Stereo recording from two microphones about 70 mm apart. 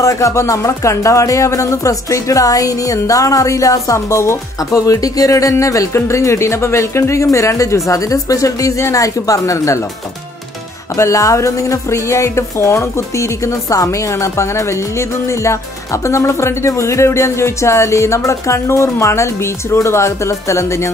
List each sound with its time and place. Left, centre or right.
0.0 s a woman's voice: left
11.0 s a woman's voice: left